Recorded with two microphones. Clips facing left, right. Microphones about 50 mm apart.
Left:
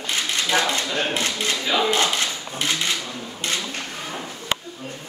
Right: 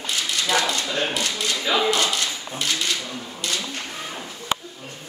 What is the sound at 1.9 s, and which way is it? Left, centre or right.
Dog, left.